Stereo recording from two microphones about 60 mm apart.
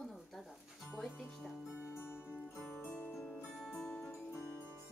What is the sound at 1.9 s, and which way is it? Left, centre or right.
Music, left.